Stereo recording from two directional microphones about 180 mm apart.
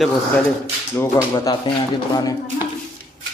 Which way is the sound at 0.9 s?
15° left (ahead or behind).